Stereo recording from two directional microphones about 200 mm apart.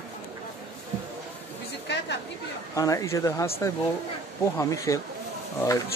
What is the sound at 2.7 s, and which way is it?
Speech, 15° left (ahead or behind).